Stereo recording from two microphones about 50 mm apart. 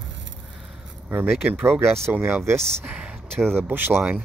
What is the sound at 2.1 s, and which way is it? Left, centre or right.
Speech, right.